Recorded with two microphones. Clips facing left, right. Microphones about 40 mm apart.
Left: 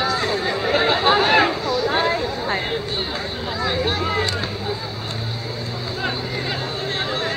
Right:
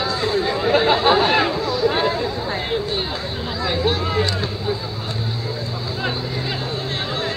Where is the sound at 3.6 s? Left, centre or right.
Centre.